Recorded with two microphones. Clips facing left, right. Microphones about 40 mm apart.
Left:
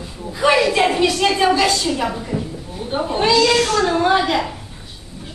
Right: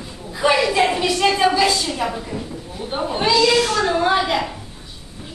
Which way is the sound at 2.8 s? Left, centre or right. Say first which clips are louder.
Left 3 dB; centre.